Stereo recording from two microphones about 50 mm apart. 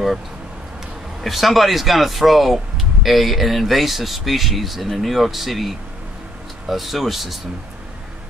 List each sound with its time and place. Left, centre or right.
1.2 s speech: centre